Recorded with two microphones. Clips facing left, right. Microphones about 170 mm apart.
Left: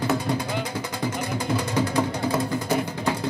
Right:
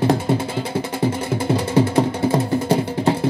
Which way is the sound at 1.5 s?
30° right (ahead or behind).